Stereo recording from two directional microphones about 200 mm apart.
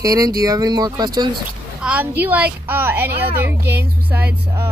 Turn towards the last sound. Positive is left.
turn(degrees=-10)  # may be behind; listen again after turning